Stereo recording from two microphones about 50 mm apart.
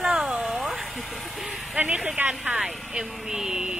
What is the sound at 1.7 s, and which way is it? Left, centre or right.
A woman's voice, right.